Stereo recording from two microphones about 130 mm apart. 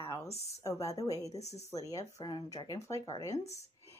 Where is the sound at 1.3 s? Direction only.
55° left (ahead or behind).